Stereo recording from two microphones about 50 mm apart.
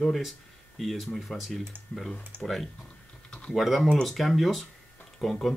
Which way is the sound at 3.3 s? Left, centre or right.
Centre.